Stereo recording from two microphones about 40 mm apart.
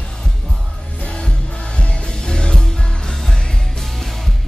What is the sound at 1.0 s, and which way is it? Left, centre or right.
Music, left.